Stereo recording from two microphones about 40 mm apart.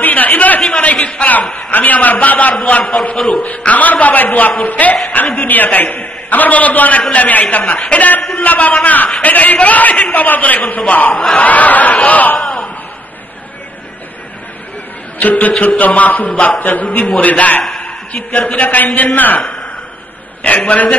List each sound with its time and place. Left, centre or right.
0.0 s a man's voice: left
1.7 s a man's voice: left
15.1 s a man's voice: left
17.7 s a sound: left
18.3 s a man's voice: left
20.4 s a man's voice: left